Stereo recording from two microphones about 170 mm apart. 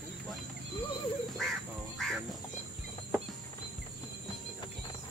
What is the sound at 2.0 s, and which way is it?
Music, 5° left (ahead or behind).